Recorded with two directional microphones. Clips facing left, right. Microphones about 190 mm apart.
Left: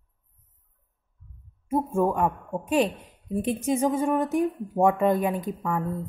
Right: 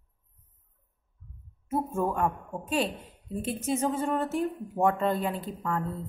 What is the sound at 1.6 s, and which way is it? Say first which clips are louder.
A woman's voice: left 5 dB; 15° left (ahead or behind).